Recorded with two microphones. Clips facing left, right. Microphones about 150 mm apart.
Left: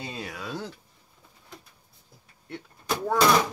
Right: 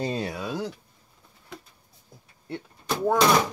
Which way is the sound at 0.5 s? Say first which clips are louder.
Right 4 dB; 15° right (ahead or behind).